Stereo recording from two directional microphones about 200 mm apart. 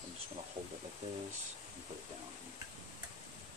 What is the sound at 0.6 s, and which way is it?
Speech, 20° right (ahead or behind).